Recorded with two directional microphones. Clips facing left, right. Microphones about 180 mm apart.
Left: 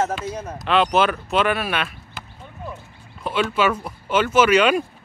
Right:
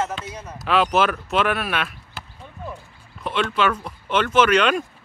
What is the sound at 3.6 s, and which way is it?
Speech, 10° left (ahead or behind).